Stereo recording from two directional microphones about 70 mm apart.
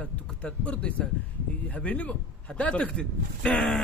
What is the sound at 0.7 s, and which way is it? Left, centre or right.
Speech, centre.